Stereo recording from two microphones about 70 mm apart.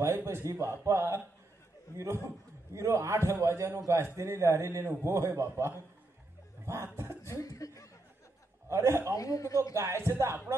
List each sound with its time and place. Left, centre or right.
0.0 s a man's voice: right
1.9 s speech: left
2.2 s a man's voice: right
6.6 s a sound: right
7.2 s speech: left
8.6 s a man's voice: right
9.1 s speech: left
9.8 s a man's voice: right